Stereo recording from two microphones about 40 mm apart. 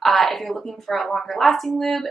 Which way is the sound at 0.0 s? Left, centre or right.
Centre.